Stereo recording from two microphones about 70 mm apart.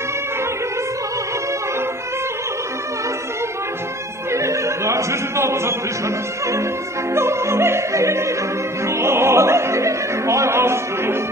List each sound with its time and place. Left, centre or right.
4.3 s opera: right